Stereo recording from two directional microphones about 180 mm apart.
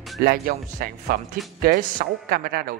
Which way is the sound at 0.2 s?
55° right (ahead or behind).